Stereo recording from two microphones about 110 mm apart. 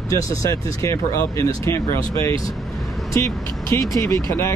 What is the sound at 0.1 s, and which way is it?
Speech, 30° left (ahead or behind).